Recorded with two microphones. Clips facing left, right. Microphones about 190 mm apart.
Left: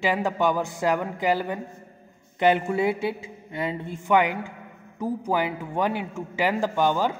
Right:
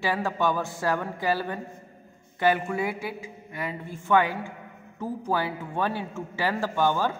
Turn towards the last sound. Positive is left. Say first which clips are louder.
# left 2 dB
turn(degrees=15)  # may be behind; listen again after turning